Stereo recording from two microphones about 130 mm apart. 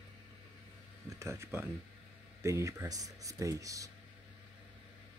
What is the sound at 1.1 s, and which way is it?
Speech, 20° right (ahead or behind).